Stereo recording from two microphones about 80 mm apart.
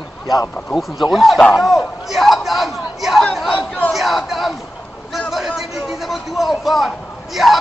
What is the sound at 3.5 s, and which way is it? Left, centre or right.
Chatter, centre.